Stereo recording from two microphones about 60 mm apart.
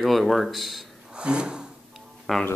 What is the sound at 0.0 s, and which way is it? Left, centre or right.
Speech, centre.